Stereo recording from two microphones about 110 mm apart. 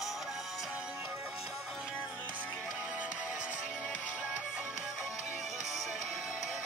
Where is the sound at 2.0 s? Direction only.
15° right (ahead or behind).